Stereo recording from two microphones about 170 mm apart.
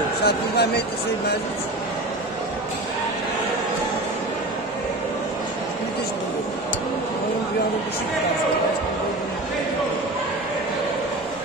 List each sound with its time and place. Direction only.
0.2 s speech: 70° left (ahead or behind)